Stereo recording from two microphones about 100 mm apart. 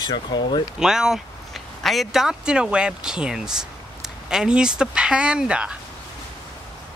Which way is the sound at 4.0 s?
5° right (ahead or behind).